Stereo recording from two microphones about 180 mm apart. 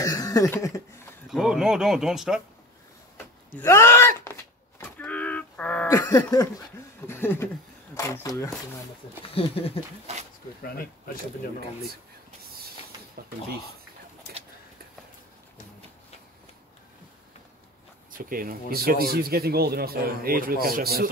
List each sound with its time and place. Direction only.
0.0 s a sound: 20° left (ahead or behind)
1.3 s speech: centre (ahead or behind)
3.5 s a sound: 15° left (ahead or behind)
5.9 s a sound: 20° left (ahead or behind)
7.1 s speech: 15° left (ahead or behind)
9.2 s speech: 30° left (ahead or behind)
10.6 s speech: 55° left (ahead or behind)
13.2 s speech: 60° right (ahead or behind)
18.1 s speech: 50° right (ahead or behind)